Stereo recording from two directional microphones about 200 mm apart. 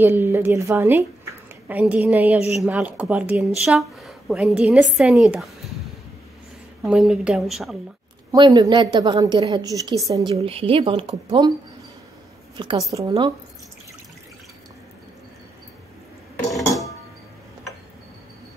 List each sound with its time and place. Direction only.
0.0 s a woman's voice: 10° right (ahead or behind)
6.8 s a woman's voice: centre (ahead or behind)
8.3 s a woman's voice: 20° right (ahead or behind)
10.3 s a woman's voice: 30° right (ahead or behind)
12.5 s a woman's voice: 25° right (ahead or behind)